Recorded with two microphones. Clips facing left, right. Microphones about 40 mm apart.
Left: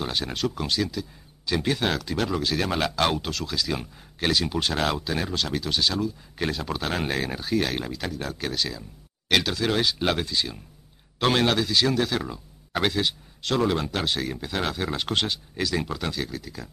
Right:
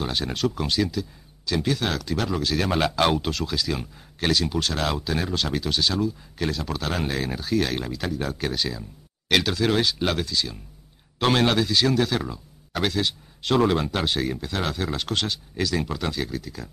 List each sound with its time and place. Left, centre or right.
0.0 s speech: centre
1.4 s speech: left
1.9 s speech: centre
6.3 s speech: centre
10.2 s speech: centre
11.1 s speech: centre
13.7 s speech: centre
14.4 s speech: centre